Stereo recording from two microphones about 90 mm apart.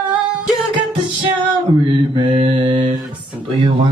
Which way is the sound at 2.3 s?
70° right (ahead or behind).